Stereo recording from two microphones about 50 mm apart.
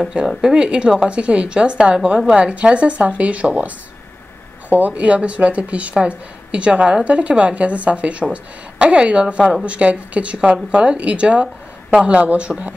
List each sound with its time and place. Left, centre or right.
0.4 s speech: centre